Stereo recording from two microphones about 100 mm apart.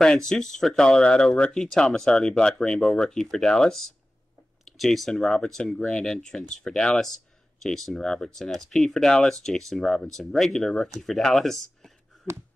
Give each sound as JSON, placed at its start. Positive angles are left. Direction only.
{"t": 0.0, "sound": "speech", "side_deg": 5}